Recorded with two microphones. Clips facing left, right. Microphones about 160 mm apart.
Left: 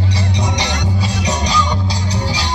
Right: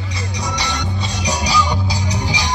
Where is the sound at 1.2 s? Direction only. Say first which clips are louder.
Right 1 dB; 5° right (ahead or behind).